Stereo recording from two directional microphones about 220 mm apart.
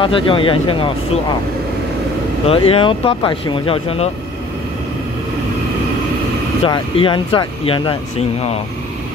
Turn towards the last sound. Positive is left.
turn(degrees=20)  # may be behind; listen again after turning